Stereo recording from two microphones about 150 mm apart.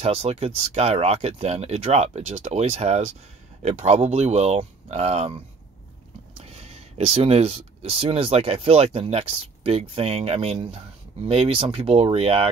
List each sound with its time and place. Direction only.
0.0 s speech: 45° right (ahead or behind)